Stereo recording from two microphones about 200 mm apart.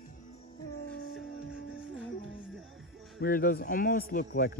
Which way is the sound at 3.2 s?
50° left (ahead or behind).